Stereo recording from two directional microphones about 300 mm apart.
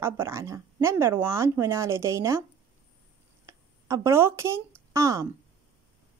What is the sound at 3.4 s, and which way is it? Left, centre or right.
A woman's voice, centre.